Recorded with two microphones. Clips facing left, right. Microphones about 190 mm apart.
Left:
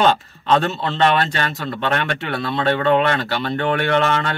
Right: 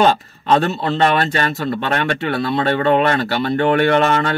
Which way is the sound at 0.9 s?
5° right (ahead or behind).